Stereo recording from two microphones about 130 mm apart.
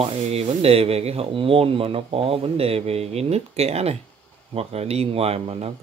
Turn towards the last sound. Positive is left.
turn(degrees=-50)  # may be behind; listen again after turning